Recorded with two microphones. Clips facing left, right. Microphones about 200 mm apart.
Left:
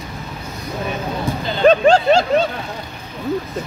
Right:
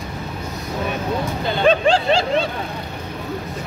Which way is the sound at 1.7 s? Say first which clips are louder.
Left 5 dB; 45° left (ahead or behind).